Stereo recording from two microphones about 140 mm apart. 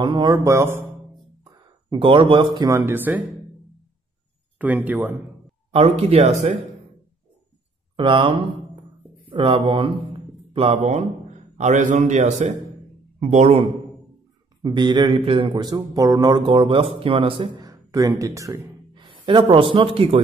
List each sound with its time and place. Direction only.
0.0 s a man's voice: 30° right (ahead or behind)
0.5 s speech: 20° right (ahead or behind)
1.4 s speech: 35° right (ahead or behind)
2.8 s speech: 15° right (ahead or behind)
4.6 s speech: 10° right (ahead or behind)
5.7 s speech: 45° right (ahead or behind)
7.9 s speech: 35° right (ahead or behind)
14.6 s a man's voice: 30° right (ahead or behind)
17.6 s speech: 25° right (ahead or behind)
18.9 s a sound: 35° right (ahead or behind)
19.4 s a man's voice: 35° right (ahead or behind)